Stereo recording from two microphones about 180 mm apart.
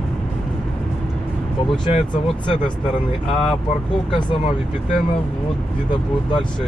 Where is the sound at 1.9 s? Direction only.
35° left (ahead or behind).